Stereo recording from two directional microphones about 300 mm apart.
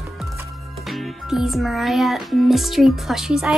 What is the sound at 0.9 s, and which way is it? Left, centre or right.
Music, centre.